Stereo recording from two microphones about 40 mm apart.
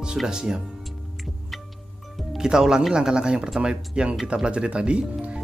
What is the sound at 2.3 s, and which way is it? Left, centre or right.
Speech, centre.